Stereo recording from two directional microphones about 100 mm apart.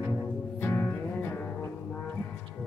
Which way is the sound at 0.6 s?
20° left (ahead or behind).